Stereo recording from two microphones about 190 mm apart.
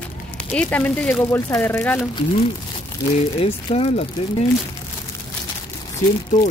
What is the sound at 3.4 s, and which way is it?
Speech, 30° left (ahead or behind).